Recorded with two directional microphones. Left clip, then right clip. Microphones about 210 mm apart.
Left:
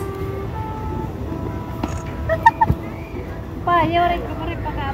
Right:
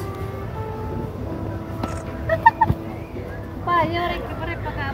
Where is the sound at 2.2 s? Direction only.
15° right (ahead or behind).